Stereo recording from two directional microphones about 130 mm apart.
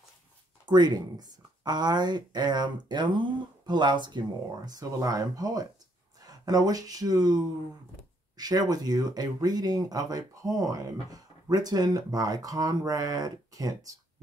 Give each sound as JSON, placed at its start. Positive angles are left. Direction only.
{"t": 0.7, "sound": "speech", "side_deg": -35}